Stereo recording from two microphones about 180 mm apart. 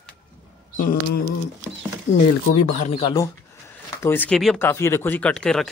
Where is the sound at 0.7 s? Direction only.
50° left (ahead or behind).